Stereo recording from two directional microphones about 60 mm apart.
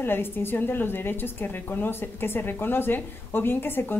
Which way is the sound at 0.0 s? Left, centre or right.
Left.